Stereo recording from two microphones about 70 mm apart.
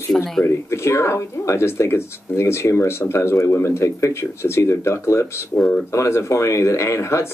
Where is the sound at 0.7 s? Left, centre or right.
Left.